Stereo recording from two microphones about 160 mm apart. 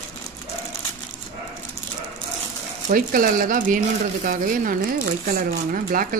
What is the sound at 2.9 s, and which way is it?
Speech, 65° right (ahead or behind).